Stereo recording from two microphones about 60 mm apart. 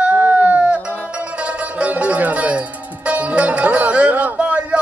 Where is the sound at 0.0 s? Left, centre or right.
Right.